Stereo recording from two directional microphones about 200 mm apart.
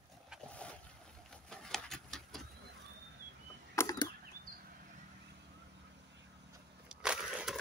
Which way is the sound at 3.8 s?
20° left (ahead or behind).